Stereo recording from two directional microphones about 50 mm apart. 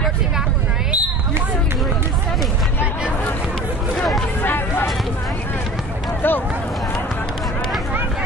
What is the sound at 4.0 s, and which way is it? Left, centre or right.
Hubbub, centre.